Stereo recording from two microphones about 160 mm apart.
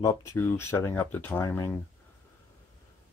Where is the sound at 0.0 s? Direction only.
20° left (ahead or behind).